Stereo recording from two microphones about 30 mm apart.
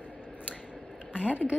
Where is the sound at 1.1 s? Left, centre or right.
Right.